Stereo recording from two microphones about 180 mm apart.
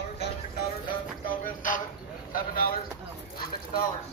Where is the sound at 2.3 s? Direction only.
55° left (ahead or behind).